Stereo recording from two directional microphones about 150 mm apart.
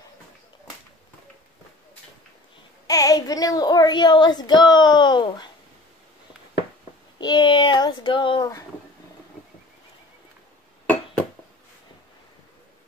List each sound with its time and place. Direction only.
2.9 s speech: 25° left (ahead or behind)
7.2 s child singing: 30° left (ahead or behind)